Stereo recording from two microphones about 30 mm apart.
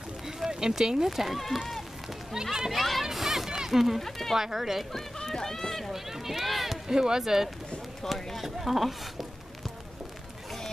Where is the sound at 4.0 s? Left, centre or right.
Centre.